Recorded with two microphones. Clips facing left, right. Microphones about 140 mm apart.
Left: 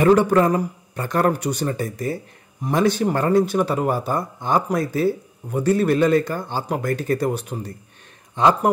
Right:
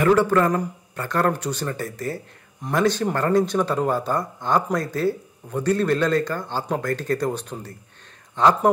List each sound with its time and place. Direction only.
0.0 s a man's voice: 20° left (ahead or behind)